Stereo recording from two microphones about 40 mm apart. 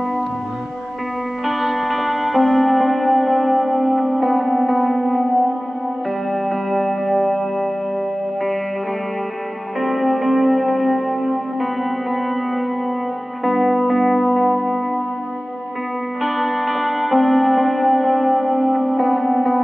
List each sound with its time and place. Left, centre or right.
1.4 s music: centre
6.7 s music: centre
9.8 s music: centre
16.2 s music: centre
18.3 s music: right
18.9 s music: centre